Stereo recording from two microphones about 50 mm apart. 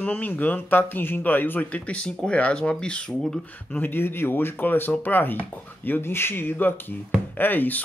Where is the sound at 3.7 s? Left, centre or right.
Left.